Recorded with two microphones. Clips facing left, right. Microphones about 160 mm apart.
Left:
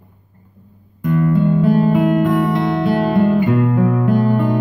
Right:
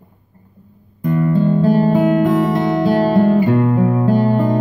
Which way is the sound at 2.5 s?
35° right (ahead or behind).